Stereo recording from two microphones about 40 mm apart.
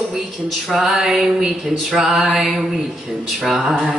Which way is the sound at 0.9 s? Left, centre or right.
Right.